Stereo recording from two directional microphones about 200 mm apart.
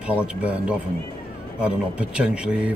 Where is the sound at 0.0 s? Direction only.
5° right (ahead or behind).